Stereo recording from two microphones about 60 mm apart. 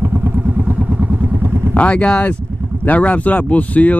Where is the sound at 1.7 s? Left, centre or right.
Centre.